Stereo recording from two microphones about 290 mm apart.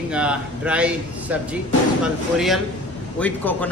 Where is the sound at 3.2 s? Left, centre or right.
Centre.